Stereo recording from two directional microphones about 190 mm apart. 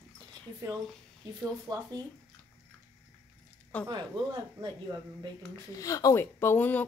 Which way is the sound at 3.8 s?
20° right (ahead or behind).